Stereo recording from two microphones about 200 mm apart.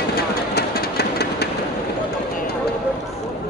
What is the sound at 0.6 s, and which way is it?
Engine, 55° left (ahead or behind).